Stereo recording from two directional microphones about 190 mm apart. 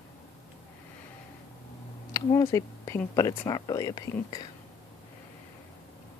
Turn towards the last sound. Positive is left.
turn(degrees=20)  # may be behind; listen again after turning